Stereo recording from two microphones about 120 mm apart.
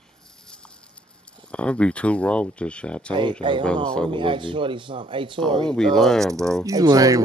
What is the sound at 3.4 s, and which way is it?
Speech, 40° right (ahead or behind).